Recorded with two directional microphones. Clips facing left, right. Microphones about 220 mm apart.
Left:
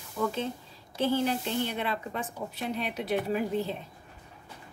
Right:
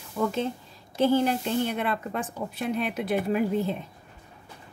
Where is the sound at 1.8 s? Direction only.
50° right (ahead or behind).